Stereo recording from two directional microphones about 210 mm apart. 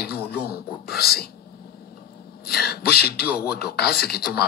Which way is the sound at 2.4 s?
50° left (ahead or behind).